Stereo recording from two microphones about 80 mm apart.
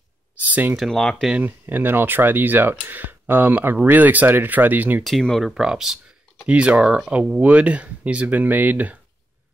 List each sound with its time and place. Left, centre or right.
0.4 s speech: right
0.7 s speech: centre
1.4 s speech: right
5.0 s speech: centre
5.5 s speech: centre